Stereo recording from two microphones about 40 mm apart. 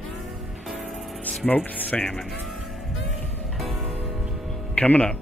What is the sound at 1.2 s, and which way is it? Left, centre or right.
Music, left.